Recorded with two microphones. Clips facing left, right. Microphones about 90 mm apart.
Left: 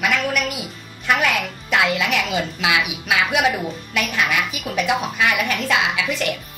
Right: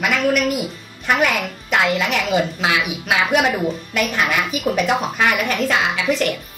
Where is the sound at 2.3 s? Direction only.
35° right (ahead or behind).